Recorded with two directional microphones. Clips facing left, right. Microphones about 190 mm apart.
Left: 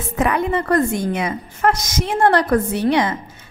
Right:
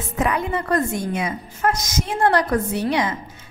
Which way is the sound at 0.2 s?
60° left (ahead or behind).